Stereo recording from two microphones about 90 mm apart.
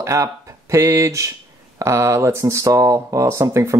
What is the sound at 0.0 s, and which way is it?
Speech, 35° right (ahead or behind).